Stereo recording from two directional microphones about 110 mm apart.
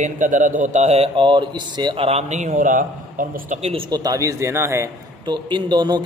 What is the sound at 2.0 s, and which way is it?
A man's voice, 80° right.